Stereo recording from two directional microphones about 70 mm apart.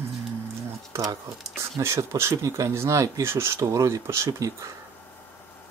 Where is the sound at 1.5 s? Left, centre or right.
Right.